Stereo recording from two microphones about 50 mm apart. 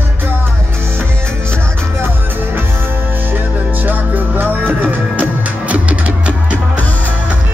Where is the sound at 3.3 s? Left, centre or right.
Right.